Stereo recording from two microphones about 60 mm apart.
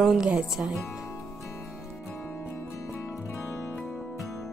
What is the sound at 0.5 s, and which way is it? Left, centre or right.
Speech, centre.